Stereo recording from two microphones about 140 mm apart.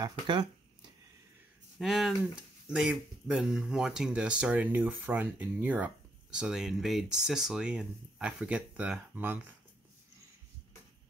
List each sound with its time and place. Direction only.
0.0 s speech: 35° right (ahead or behind)
1.8 s speech: centre (ahead or behind)